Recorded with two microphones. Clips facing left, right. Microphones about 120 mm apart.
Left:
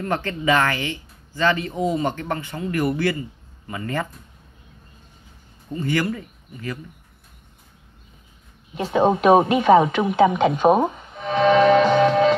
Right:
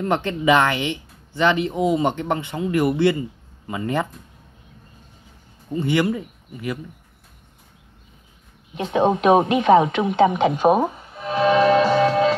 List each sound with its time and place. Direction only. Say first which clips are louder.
0.0 s speech: right 3 dB; 20° right (ahead or behind)
5.7 s speech: right 3 dB; 20° right (ahead or behind)
8.7 s speech: even; centre (ahead or behind)